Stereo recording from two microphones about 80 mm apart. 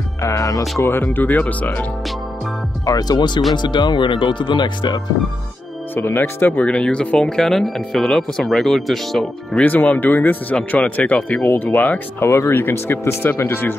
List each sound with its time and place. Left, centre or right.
0.2 s speech: left
0.8 s speech: left
2.8 s speech: left
5.9 s speech: left; by 9.7 s centre
9.7 s speech: left
12.3 s speech: left